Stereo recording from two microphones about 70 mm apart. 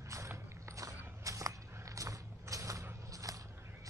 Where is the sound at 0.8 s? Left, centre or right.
Right.